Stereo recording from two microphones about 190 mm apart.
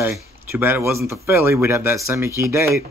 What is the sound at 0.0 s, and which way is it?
Speech, 10° right (ahead or behind).